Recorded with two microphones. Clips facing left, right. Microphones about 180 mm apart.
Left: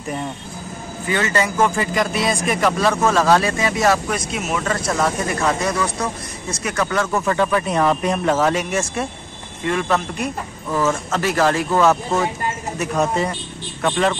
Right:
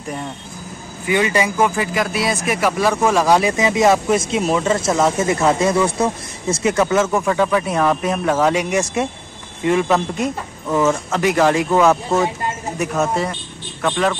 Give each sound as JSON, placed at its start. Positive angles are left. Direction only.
{"t": 1.0, "sound": "speech", "side_deg": -15}
{"t": 11.9, "sound": "speech", "side_deg": 0}
{"t": 13.0, "sound": "speech", "side_deg": 0}